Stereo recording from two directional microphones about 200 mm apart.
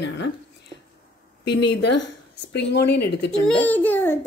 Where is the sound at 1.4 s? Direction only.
55° left (ahead or behind).